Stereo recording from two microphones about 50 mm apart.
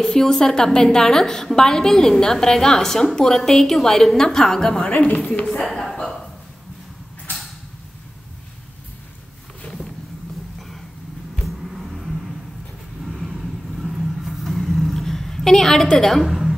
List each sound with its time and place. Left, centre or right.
0.0 s a woman's voice: centre; by 5.5 s left
5.5 s speech: centre
11.4 s vehicle: centre
16.3 s a sound: centre